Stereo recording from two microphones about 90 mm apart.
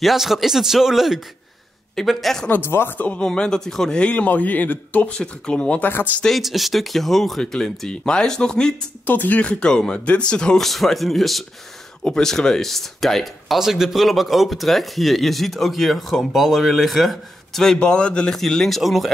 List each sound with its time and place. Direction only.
0.0 s speech: centre (ahead or behind)
2.4 s a man's voice: 25° left (ahead or behind)
6.2 s a man's voice: centre (ahead or behind)